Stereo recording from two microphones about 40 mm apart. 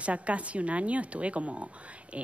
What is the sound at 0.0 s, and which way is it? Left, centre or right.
Speech, right.